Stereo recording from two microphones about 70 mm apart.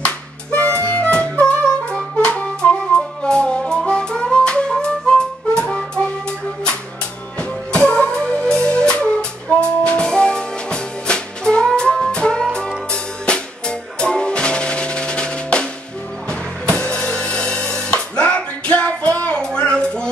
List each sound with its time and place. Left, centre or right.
0.0 s harmonica: left
0.8 s music: centre
7.3 s music: centre